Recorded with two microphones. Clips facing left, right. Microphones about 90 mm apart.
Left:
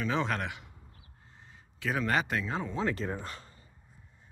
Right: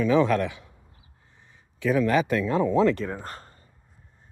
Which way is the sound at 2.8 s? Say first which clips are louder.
Right 10 dB; 65° right (ahead or behind).